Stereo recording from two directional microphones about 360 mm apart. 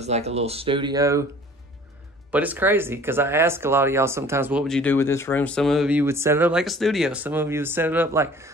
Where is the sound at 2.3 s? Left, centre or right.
Centre.